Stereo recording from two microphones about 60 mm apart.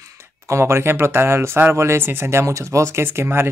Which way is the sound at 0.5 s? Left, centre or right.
Right.